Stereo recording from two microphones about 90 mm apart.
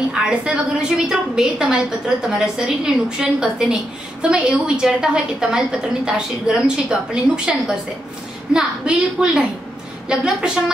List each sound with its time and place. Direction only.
0.1 s a woman's voice: 10° right (ahead or behind)